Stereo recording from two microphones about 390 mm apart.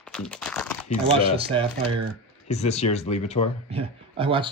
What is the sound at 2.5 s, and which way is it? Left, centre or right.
Speech, centre.